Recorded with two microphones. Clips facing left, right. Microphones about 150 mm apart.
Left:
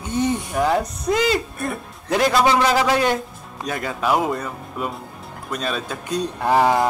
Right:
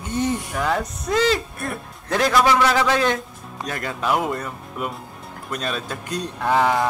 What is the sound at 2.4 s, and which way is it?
Speech, 25° left (ahead or behind).